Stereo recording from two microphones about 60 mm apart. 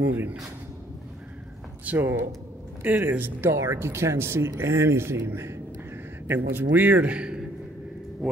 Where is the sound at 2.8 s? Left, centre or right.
Right.